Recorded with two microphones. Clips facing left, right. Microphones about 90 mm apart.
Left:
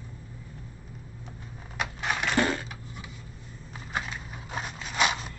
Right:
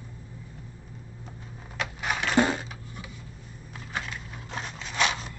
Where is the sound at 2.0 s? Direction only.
Centre (ahead or behind).